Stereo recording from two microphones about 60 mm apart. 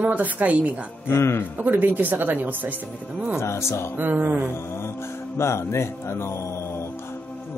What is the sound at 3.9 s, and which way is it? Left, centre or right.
Speech, right.